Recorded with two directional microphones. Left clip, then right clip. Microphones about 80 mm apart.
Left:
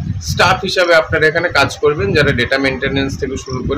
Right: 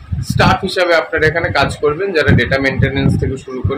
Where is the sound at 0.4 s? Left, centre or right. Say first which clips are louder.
Left 1 dB; left.